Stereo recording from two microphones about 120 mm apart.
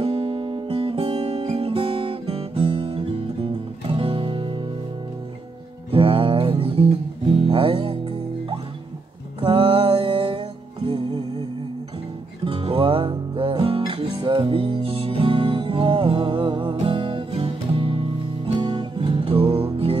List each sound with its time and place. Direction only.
0.0 s guitar: 45° right (ahead or behind)
3.9 s music: 45° right (ahead or behind)
5.9 s music: 45° right (ahead or behind)
9.4 s music: 45° right (ahead or behind)
12.4 s music: 45° right (ahead or behind)